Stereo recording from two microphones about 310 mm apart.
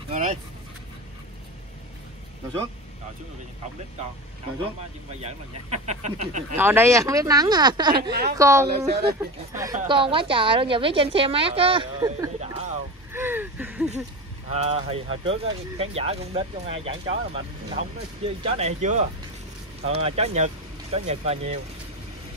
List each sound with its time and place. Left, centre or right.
0.1 s dog: right
5.2 s speech: right
6.5 s a woman's voice: centre
7.9 s a woman's voice: right
8.4 s a woman's voice: centre
8.6 s a woman's voice: right
9.2 s a woman's voice: centre
13.1 s a sound: centre
14.5 s speech: centre